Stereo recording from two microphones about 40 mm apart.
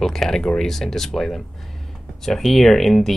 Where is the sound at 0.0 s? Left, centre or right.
Centre.